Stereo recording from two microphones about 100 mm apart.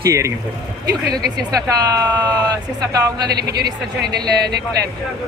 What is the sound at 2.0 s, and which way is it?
Speech, 40° right (ahead or behind).